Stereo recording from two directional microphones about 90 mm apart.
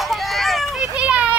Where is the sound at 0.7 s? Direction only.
10° right (ahead or behind).